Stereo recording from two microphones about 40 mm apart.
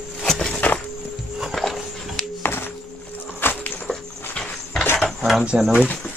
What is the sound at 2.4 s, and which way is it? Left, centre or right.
Music, left.